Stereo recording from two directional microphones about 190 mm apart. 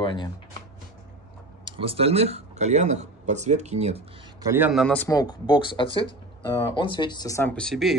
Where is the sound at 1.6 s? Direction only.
25° right (ahead or behind).